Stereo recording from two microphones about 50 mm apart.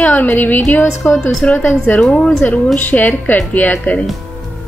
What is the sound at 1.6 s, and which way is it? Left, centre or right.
Speech, left.